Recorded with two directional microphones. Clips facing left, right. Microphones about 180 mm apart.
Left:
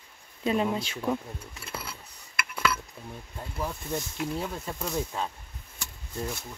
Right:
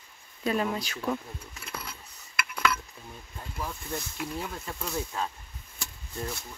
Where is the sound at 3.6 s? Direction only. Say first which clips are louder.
Left 3 dB; 25° left (ahead or behind).